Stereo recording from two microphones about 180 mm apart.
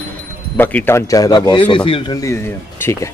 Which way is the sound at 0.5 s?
10° left (ahead or behind).